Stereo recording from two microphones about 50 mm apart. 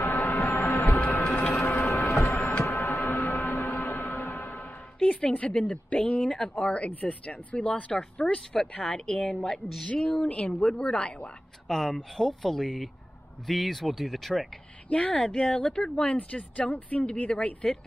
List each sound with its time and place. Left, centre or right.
0.0 s music: left
0.5 s printer: left
0.7 s music: left
1.2 s music: left
2.5 s printer: left
3.8 s a sound: left
4.9 s a woman's voice: left
6.5 s speech: left; by 9.6 s centre
9.8 s a woman's voice: left
11.7 s speech: centre
14.9 s speech: left
16.1 s speech: left